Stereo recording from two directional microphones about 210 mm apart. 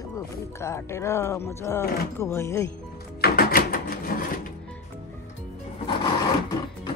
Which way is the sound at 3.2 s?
45° left (ahead or behind).